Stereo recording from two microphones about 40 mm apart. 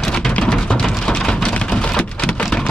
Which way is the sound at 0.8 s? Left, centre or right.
Left.